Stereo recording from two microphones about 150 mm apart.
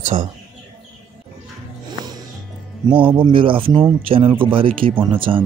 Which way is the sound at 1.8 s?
25° right (ahead or behind).